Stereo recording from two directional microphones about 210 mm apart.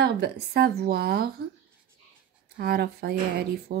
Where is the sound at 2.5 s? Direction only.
50° right (ahead or behind).